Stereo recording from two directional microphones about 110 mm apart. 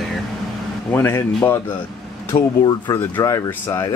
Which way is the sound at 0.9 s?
20° left (ahead or behind).